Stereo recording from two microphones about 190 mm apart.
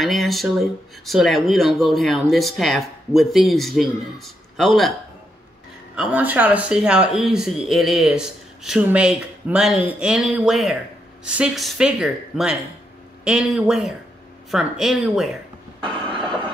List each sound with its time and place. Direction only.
0.0 s speech: centre (ahead or behind)
5.9 s speech: 5° right (ahead or behind)